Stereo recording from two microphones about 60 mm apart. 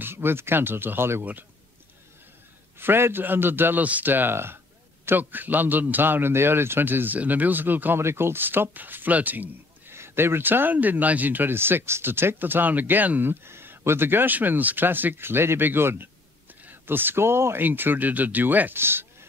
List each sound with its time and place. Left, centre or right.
0.0 s speech: right
2.8 s speech: right
8.0 s speech: right
9.9 s speech: right